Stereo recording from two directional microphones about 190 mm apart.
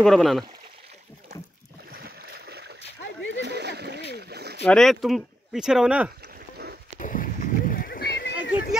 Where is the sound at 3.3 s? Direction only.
65° right (ahead or behind).